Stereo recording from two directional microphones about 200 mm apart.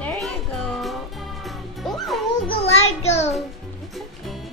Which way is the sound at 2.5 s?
30° left (ahead or behind).